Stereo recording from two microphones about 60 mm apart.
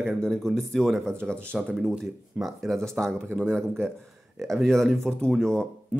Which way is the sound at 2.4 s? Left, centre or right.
Centre.